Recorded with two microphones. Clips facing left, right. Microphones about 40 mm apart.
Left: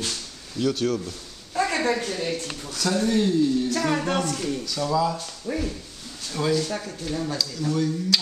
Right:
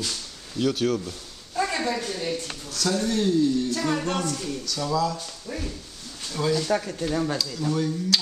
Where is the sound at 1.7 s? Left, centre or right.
Left.